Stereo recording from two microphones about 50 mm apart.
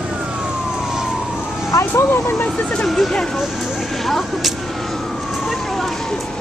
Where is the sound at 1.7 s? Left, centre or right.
Left.